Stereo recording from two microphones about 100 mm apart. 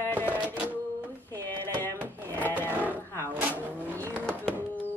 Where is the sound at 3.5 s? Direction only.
20° left (ahead or behind).